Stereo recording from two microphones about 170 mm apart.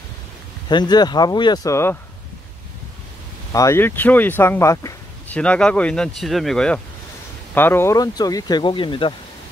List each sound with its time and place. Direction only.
0.7 s speech: 25° left (ahead or behind)
3.5 s speech: 15° left (ahead or behind)